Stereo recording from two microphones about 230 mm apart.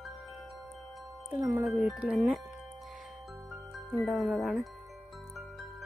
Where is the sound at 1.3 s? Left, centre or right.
Centre.